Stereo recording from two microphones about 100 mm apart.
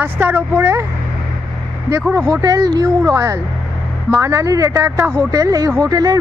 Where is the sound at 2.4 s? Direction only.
40° right (ahead or behind).